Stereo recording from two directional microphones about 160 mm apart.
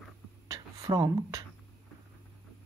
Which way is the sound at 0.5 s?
25° right (ahead or behind).